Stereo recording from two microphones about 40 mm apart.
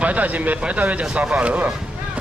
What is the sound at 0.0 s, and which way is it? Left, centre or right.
Speech, right.